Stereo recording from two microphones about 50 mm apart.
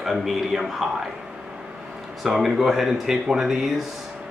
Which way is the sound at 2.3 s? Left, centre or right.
Centre.